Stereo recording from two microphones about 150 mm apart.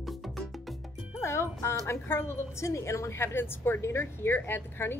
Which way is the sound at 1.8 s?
15° left (ahead or behind).